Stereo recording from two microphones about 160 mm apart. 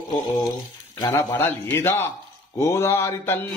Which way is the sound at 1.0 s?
15° left (ahead or behind).